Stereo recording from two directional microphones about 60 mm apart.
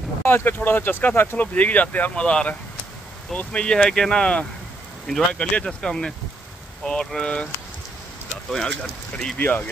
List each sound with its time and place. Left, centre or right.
0.2 s speech: left; by 7.4 s centre
8.5 s speech: centre
9.4 s speech: left